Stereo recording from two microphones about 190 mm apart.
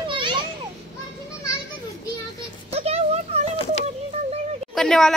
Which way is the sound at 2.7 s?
35° right (ahead or behind).